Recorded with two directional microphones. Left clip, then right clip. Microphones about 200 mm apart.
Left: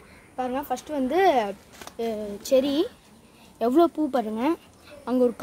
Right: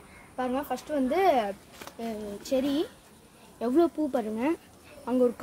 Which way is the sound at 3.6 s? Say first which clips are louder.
Left 4 dB; 35° left (ahead or behind).